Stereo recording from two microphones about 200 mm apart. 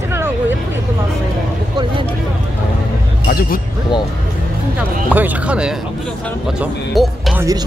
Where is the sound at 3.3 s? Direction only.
50° left (ahead or behind).